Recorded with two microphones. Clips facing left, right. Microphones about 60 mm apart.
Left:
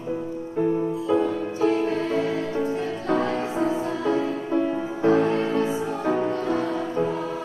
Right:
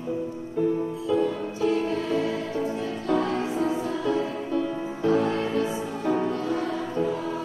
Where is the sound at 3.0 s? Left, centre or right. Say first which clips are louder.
Even; left.